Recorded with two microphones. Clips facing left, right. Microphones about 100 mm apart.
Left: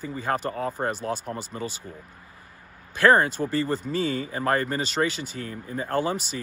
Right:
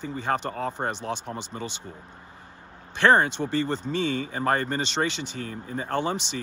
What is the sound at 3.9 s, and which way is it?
Speech, 40° left (ahead or behind).